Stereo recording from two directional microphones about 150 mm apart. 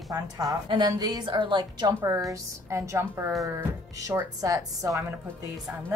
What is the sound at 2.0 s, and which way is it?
A woman's voice, 20° right (ahead or behind).